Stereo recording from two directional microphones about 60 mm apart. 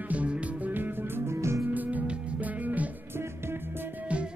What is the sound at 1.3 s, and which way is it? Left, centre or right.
Music, right.